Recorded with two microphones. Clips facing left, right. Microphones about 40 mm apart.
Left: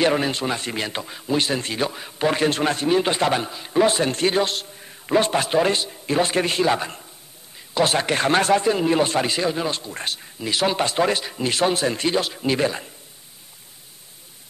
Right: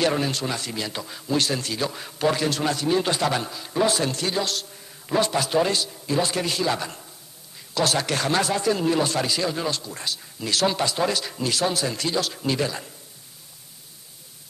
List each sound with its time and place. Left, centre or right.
0.0 s a man's voice: left
1.9 s a man's voice: centre
2.1 s a man's voice: left
10.4 s a man's voice: left
10.9 s a man's voice: left